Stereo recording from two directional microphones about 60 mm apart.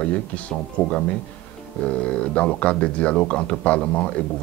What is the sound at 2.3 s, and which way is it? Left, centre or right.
Speech, left.